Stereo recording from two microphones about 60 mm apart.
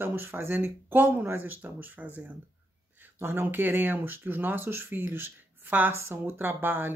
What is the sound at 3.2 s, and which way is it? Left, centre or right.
Speech, right.